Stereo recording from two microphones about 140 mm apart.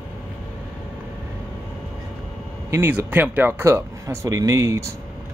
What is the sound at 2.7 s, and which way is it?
Speech, 20° right (ahead or behind).